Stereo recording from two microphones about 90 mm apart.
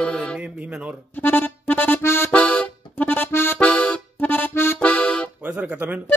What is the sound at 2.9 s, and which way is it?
Accordion, 20° left (ahead or behind).